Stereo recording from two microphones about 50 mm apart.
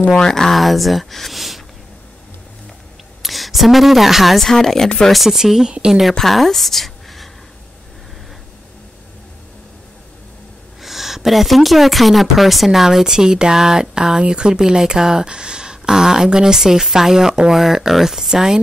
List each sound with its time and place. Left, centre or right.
0.1 s speech: centre
3.2 s speech: centre
5.1 s a woman's voice: centre
6.1 s a woman's voice: centre
10.8 s speech: centre